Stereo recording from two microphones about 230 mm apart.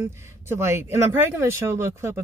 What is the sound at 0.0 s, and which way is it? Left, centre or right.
Speech, centre.